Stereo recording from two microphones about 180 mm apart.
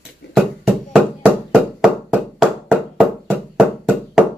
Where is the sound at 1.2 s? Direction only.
5° right (ahead or behind).